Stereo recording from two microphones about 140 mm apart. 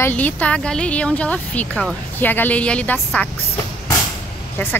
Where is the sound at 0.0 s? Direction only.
10° left (ahead or behind).